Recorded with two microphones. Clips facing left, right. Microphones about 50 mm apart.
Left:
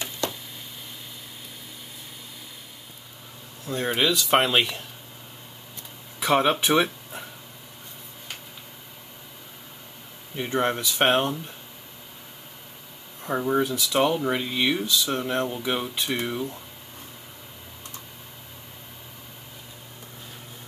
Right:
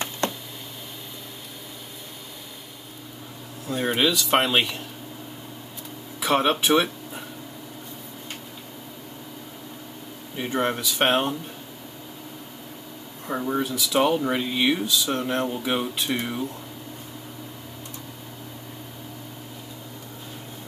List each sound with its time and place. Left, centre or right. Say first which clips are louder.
0.2 s a sound: right 2 dB; right
3.6 s speech: right 1 dB; centre
6.1 s speech: even; centre
6.6 s speech: right 1 dB; centre
10.3 s speech: even; centre
13.2 s speech: left 2 dB; centre
13.7 s speech: right 1 dB; centre